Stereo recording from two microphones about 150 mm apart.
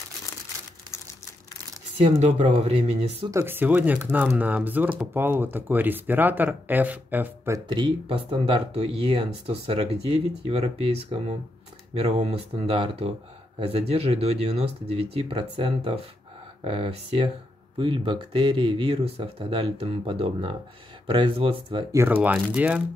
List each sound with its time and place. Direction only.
2.0 s speech: 45° right (ahead or behind)
3.3 s speech: 15° right (ahead or behind)
7.6 s speech: 30° right (ahead or behind)
21.9 s speech: 15° right (ahead or behind)